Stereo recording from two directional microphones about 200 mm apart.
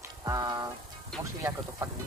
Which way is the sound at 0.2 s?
20° right (ahead or behind).